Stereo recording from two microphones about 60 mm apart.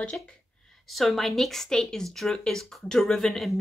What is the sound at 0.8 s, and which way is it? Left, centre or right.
A woman's voice, centre.